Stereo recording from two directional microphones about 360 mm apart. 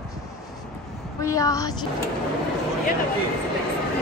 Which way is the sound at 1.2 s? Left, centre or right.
Centre.